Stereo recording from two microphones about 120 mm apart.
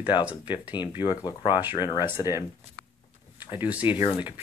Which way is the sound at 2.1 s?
25° right (ahead or behind).